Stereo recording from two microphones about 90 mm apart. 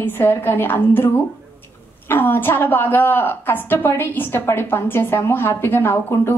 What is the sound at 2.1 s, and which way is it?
A woman's voice, 25° left (ahead or behind).